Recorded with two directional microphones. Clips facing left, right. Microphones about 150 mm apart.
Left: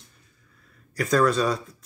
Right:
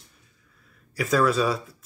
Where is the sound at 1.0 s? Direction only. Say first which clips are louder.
Left 1 dB; 5° right (ahead or behind).